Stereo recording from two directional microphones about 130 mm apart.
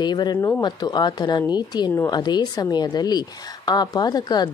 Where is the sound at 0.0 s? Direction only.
35° left (ahead or behind).